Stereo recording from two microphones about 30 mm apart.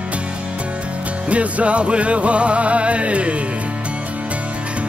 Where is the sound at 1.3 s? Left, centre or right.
Right.